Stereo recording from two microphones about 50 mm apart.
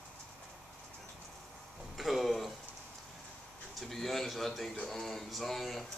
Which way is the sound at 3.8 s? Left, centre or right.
Centre.